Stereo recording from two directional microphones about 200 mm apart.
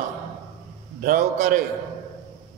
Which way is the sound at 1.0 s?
45° right (ahead or behind).